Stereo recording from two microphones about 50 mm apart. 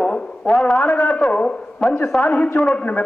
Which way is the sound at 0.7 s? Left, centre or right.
Left.